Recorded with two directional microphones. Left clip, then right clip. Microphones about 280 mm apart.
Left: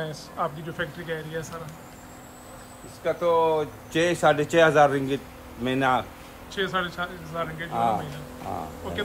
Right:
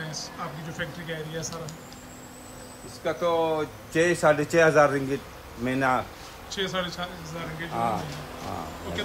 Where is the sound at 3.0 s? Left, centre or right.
Left.